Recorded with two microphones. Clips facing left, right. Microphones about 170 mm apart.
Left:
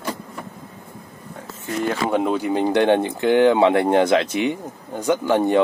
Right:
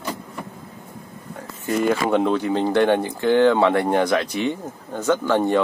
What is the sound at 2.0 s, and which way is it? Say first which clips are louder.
Speech: right 1 dB; 5° left (ahead or behind).